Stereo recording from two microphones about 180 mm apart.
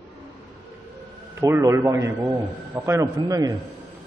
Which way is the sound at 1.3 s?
15° right (ahead or behind).